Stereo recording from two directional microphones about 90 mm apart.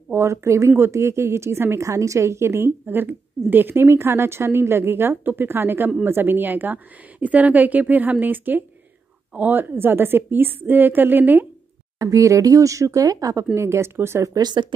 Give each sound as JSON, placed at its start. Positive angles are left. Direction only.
{"t": 0.1, "sound": "speech", "side_deg": -30}
{"t": 12.0, "sound": "speech", "side_deg": -35}
{"t": 13.6, "sound": "speech", "side_deg": -30}
{"t": 14.4, "sound": "speech", "side_deg": -55}